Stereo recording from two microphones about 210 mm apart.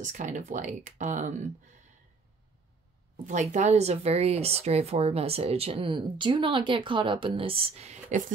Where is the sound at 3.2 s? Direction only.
35° right (ahead or behind).